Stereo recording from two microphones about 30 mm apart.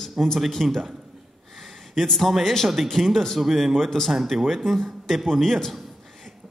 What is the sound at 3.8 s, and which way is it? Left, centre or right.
Speech, centre.